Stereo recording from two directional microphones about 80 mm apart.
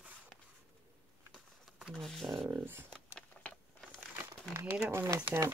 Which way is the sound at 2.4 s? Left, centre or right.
Right.